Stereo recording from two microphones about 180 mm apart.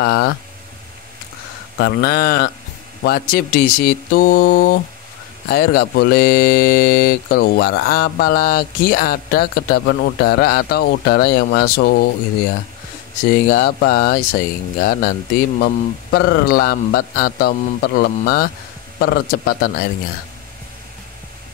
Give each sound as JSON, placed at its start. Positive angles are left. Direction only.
{"t": 0.0, "sound": "speech", "side_deg": 60}
{"t": 1.8, "sound": "speech", "side_deg": 60}
{"t": 13.3, "sound": "speech", "side_deg": 55}